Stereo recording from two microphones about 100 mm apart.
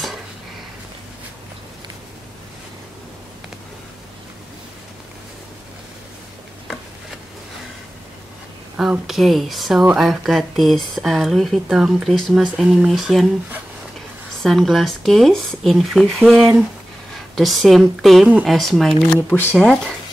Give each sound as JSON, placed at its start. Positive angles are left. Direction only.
{"t": 8.7, "sound": "speech", "side_deg": -5}
{"t": 14.4, "sound": "speech", "side_deg": 0}
{"t": 19.1, "sound": "speech", "side_deg": 20}
{"t": 19.5, "sound": "speech", "side_deg": 5}